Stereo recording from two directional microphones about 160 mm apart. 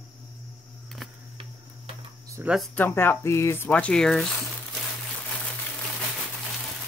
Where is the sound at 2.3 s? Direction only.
5° right (ahead or behind).